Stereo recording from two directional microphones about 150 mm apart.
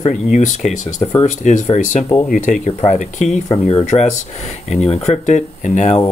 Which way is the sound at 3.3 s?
45° left (ahead or behind).